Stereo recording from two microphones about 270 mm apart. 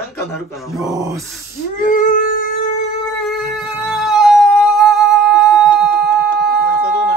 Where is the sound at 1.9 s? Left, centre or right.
Left.